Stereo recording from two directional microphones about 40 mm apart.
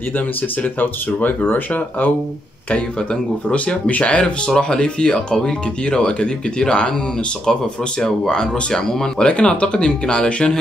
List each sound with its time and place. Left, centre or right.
0.6 s speech: left
2.7 s speech: left
4.5 s speech: centre
8.3 s speech: centre